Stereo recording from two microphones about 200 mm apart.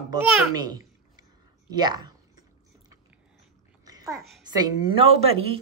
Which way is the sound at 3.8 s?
20° right (ahead or behind).